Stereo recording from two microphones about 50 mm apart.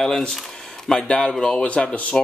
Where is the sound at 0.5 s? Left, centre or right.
Centre.